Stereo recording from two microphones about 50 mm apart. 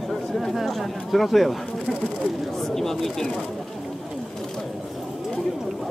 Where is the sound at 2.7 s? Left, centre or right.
Centre.